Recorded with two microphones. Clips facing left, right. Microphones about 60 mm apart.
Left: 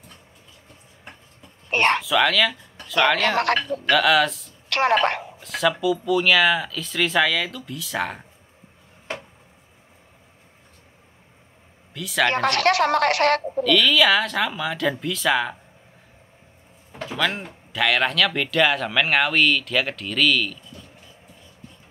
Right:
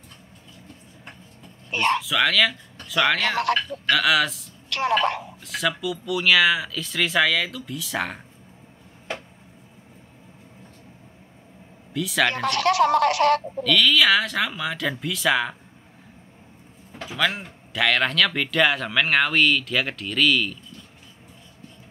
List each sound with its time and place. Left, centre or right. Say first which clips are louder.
1.7 s speech: left 3 dB; left
2.0 s speech: left 1 dB; centre
4.6 s a woman's voice: left 3 dB; left
5.4 s speech: left 5 dB; centre
11.9 s speech: left 1 dB; centre
12.4 s a woman's voice: left 1 dB; left
13.7 s speech: left 1 dB; centre
17.0 s speech: even; centre